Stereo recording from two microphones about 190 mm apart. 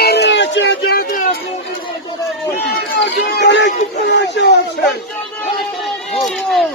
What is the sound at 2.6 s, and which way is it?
Run, 55° left (ahead or behind).